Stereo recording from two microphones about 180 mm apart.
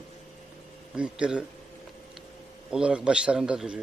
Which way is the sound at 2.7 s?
5° right (ahead or behind).